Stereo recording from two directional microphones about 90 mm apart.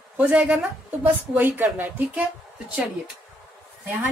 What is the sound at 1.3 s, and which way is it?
Speech, 20° right (ahead or behind).